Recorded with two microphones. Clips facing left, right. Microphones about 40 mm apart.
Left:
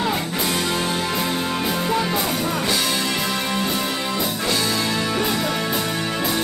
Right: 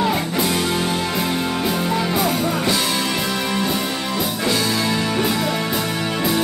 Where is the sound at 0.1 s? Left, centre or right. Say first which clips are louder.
Right 3 dB; centre.